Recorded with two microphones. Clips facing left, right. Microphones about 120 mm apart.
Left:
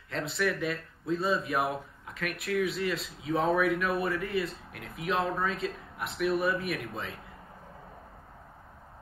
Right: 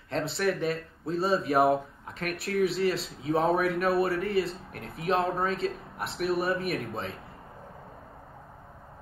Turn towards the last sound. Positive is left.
turn(degrees=-35)  # may be behind; listen again after turning